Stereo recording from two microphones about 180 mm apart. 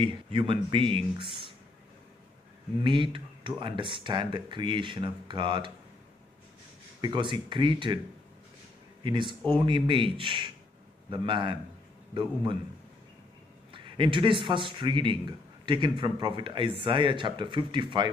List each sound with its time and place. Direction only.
0.0 s speech: 30° right (ahead or behind)
2.8 s speech: 30° right (ahead or behind)
7.0 s speech: 25° right (ahead or behind)
9.0 s speech: 25° right (ahead or behind)
13.7 s speech: 30° right (ahead or behind)